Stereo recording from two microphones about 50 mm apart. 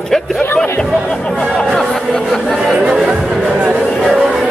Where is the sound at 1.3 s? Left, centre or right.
Left.